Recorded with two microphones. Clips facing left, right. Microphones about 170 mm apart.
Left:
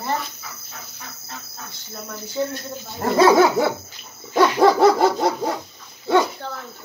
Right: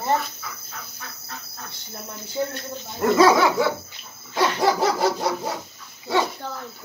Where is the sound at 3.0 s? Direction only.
40° left (ahead or behind).